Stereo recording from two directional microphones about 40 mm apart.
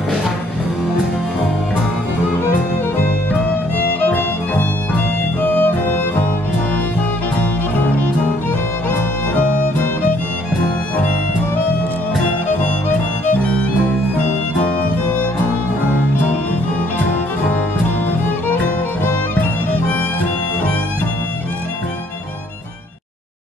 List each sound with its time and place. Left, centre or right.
4.0 s music: left